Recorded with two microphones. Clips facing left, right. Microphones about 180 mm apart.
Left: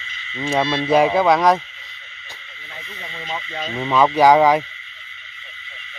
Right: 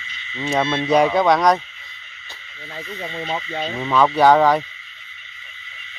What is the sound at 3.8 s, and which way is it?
Speech, 10° left (ahead or behind).